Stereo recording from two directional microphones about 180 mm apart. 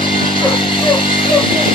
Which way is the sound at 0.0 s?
30° left (ahead or behind).